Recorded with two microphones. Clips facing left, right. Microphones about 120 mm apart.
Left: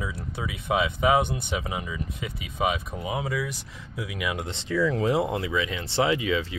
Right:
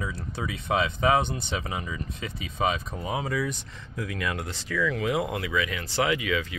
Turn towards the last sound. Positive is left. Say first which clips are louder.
# left 2 dB
turn(degrees=25)  # may be behind; listen again after turning